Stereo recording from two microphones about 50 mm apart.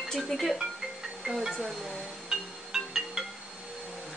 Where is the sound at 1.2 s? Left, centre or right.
Centre.